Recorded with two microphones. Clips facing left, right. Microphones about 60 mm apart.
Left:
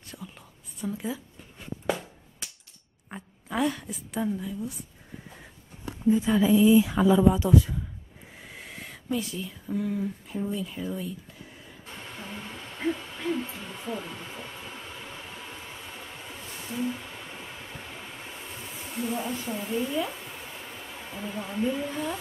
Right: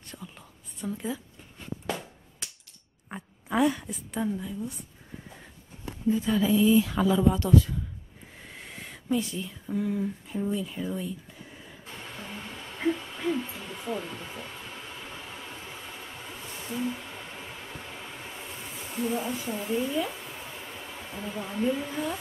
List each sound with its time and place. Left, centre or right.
0.0 s whispering: centre
3.1 s a sound: centre
6.0 s speech: centre
6.4 s speech: centre
8.4 s a sound: centre
12.8 s hoot: centre
13.8 s a sound: centre
18.9 s speech: centre
21.3 s speech: centre